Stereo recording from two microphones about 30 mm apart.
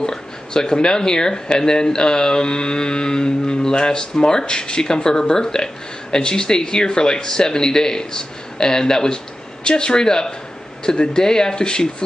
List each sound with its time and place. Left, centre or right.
0.0 s speech: centre